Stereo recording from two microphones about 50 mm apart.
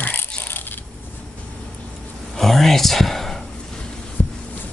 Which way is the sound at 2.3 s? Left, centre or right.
Centre.